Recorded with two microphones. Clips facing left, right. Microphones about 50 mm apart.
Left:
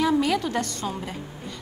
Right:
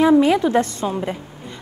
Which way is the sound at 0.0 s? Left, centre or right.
Right.